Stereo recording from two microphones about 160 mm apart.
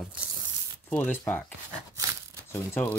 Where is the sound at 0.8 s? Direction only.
15° left (ahead or behind).